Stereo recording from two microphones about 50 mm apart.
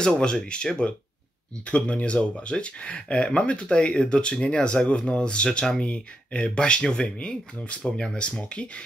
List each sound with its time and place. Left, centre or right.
0.0 s speech: centre